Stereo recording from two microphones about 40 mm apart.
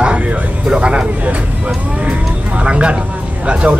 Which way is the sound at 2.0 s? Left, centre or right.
Right.